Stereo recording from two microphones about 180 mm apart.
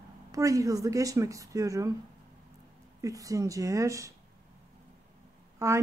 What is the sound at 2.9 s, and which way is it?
A woman's voice, 20° right (ahead or behind).